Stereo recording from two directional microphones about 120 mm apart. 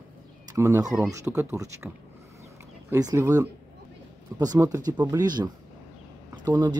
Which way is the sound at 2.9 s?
25° right (ahead or behind).